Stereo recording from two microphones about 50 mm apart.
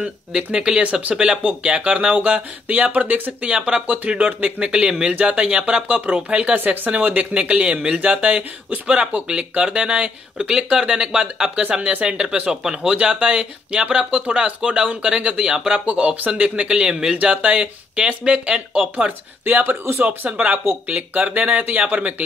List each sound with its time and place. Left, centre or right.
0.0 s speech: centre
2.1 s speech: right
3.4 s speech: centre
3.8 s speech: right
6.5 s speech: right
7.3 s speech: centre
11.9 s speech: right
15.8 s speech: right
19.4 s speech: right